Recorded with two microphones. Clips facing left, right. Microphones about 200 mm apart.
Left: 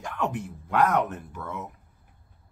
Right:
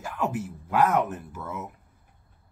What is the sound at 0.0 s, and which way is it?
Speech, 5° right (ahead or behind).